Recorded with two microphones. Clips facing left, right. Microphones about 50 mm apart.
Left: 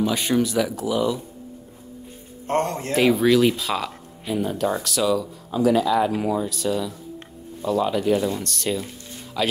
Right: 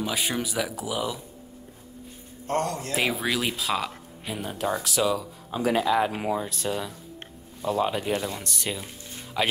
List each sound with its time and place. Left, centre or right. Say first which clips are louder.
0.0 s speech: left 7 dB; centre
2.4 s a man's voice: left 4 dB; left
2.9 s speech: left 12 dB; centre
5.5 s speech: left 4 dB; right
6.5 s speech: left 5 dB; right
8.1 s speech: left 7 dB; centre